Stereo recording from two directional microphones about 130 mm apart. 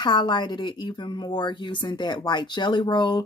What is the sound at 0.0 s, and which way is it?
A woman's voice, 35° left (ahead or behind).